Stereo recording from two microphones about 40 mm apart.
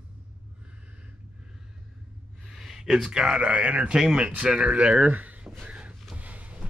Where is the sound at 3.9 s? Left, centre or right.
Centre.